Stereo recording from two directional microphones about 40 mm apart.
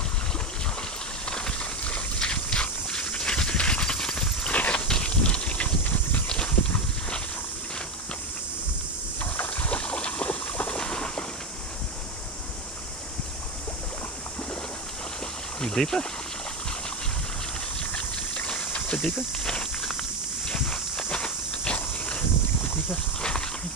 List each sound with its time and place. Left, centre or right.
1.2 s a sound: centre
4.5 s walk: left
4.8 s a sound: left
6.2 s walk: left
9.2 s boat: left; by 11.2 s centre
15.6 s speech: centre
17.9 s a sound: left
20.0 s walk: centre
21.1 s walk: left